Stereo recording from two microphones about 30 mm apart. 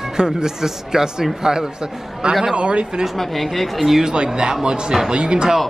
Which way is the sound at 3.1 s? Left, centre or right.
Centre.